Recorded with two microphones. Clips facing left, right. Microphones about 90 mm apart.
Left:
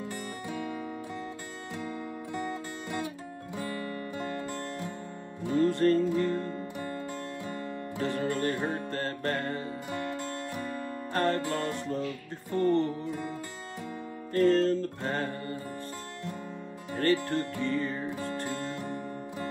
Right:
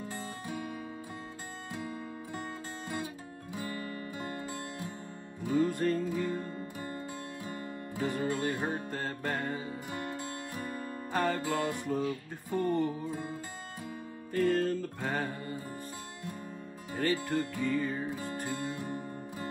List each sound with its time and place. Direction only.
5.5 s music: 10° right (ahead or behind)
8.0 s music: 15° right (ahead or behind)
11.1 s music: 15° right (ahead or behind)
14.3 s music: 10° right (ahead or behind)
16.9 s speech: 10° right (ahead or behind)
17.6 s music: 10° right (ahead or behind)